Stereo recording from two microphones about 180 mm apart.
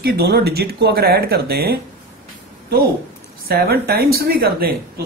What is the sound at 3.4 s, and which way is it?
Speech, 60° right (ahead or behind).